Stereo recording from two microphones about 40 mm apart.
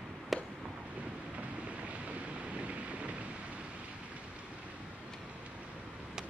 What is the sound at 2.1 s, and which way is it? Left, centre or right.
Vehicle, right.